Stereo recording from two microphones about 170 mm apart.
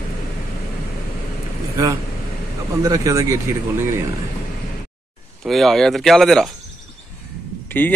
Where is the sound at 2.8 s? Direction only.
20° right (ahead or behind).